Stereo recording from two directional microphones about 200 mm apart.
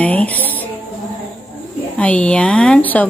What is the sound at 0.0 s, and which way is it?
Music, 5° left (ahead or behind).